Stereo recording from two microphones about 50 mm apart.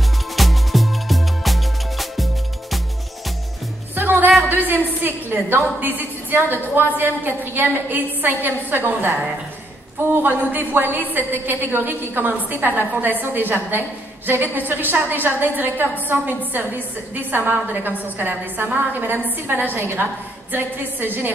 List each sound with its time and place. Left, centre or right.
0.4 s music: centre
3.9 s music: right
4.4 s a sound: right
7.0 s a woman's voice: right